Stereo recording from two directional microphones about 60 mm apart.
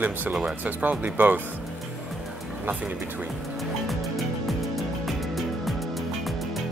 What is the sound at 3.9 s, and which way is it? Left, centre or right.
Music, centre.